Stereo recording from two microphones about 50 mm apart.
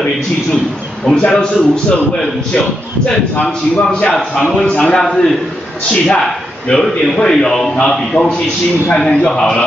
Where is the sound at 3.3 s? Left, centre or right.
Left.